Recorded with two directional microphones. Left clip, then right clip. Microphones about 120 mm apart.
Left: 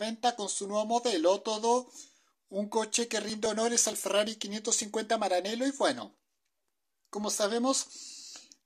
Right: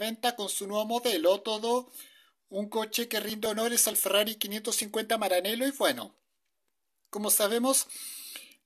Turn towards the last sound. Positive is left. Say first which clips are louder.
# right 2 dB
turn(degrees=-20)  # may be behind; listen again after turning